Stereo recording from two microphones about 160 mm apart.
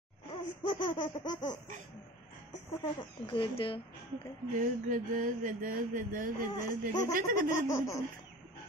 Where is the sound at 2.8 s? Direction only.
35° left (ahead or behind).